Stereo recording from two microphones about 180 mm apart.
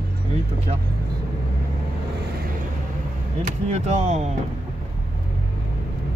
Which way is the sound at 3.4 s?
40° right (ahead or behind).